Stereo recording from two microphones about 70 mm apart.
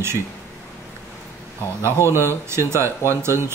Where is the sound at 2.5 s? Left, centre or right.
Right.